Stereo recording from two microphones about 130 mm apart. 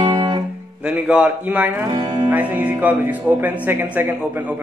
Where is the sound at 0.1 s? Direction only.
35° right (ahead or behind).